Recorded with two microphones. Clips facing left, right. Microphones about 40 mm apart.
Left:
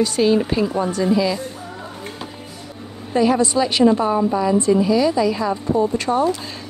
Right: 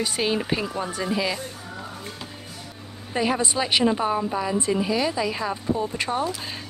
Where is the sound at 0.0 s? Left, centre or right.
Centre.